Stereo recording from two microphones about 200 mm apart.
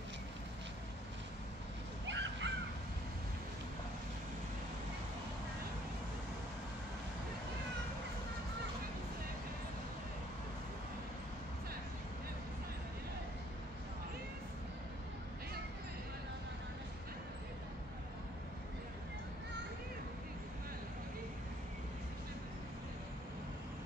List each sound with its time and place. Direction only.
2.0 s crow: 65° right (ahead or behind)